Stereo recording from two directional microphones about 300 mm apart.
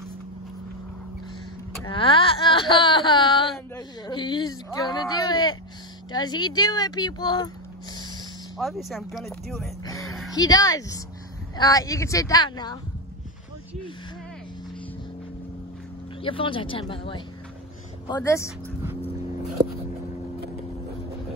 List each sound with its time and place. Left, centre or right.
1.9 s whimper: centre
3.5 s speech: centre
8.5 s speech: centre
10.3 s speech: centre
16.2 s speech: centre